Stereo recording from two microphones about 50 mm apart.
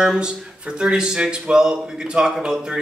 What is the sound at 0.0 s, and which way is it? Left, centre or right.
Speech, centre.